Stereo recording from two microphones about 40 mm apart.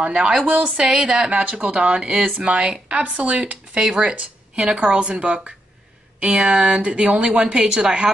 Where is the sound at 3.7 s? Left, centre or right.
Right.